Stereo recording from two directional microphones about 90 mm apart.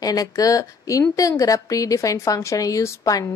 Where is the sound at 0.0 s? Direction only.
40° left (ahead or behind).